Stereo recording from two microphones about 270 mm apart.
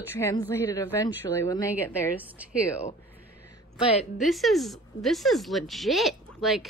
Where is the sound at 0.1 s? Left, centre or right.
Centre.